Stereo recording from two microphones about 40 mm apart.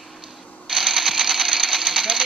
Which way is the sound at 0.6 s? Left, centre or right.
Centre.